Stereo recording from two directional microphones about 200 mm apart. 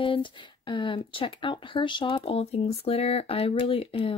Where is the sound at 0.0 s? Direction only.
25° left (ahead or behind).